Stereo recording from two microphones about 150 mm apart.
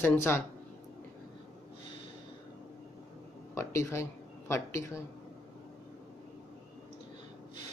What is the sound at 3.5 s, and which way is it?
Speech, 20° left (ahead or behind).